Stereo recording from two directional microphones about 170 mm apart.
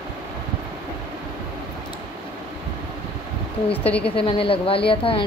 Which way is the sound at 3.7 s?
10° left (ahead or behind).